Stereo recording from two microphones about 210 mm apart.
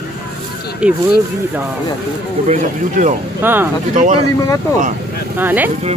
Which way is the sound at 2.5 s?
35° right (ahead or behind).